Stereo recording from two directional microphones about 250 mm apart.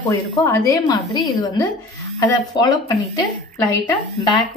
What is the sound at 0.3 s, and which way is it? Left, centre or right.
A woman's voice, centre.